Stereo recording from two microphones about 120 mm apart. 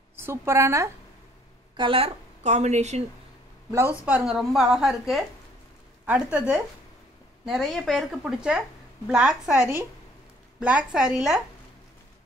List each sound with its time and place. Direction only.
0.1 s a woman's voice: 20° right (ahead or behind)
1.8 s a woman's voice: 50° right (ahead or behind); by 3.0 s 70° right (ahead or behind)
4.0 s a woman's voice: 10° right (ahead or behind)